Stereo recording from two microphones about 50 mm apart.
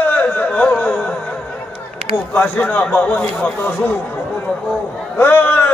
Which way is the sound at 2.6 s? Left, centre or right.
Left.